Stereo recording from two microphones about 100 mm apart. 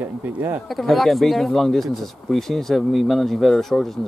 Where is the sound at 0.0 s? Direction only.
20° right (ahead or behind).